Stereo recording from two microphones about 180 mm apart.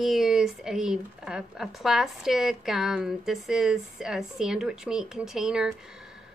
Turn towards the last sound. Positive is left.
turn(degrees=-5)  # may be behind; listen again after turning